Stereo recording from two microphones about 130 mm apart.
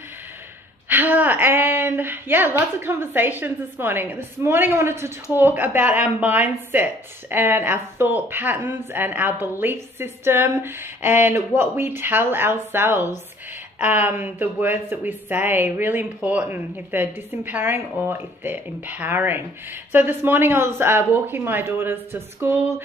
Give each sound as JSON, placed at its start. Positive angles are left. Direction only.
{"t": 0.8, "sound": "a woman's voice", "side_deg": -15}